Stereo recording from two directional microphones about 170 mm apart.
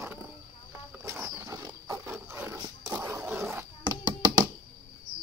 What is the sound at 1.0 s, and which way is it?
Wild animals, 15° right (ahead or behind).